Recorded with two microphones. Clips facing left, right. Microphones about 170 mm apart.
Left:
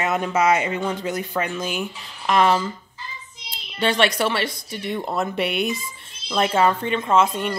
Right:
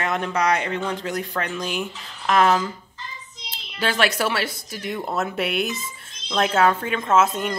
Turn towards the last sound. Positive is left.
turn(degrees=-5)  # may be behind; listen again after turning